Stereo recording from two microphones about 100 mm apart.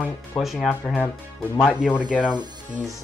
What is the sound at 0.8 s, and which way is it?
Speech, 10° left (ahead or behind).